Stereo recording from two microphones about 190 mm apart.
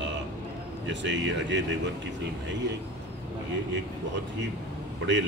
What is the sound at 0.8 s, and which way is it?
Speech, 70° right (ahead or behind).